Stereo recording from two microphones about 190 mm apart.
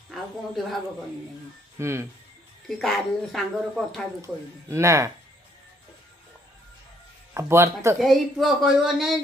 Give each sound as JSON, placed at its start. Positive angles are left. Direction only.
{"t": 0.1, "sound": "speech", "side_deg": 0}
{"t": 1.8, "sound": "speech", "side_deg": -15}
{"t": 2.8, "sound": "speech", "side_deg": 0}
{"t": 4.2, "sound": "speech", "side_deg": -15}
{"t": 7.3, "sound": "speech", "side_deg": -15}
{"t": 8.0, "sound": "speech", "side_deg": 0}